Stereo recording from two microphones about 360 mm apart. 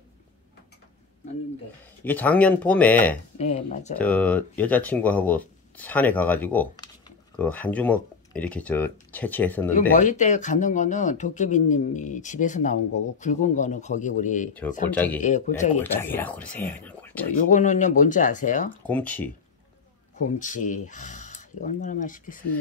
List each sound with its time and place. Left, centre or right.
2.0 s speech: centre
3.3 s speech: centre
4.0 s speech: centre
9.8 s speech: left
14.9 s speech: centre
15.1 s speech: centre
15.8 s speech: centre
17.5 s speech: left
18.9 s speech: centre
20.2 s speech: left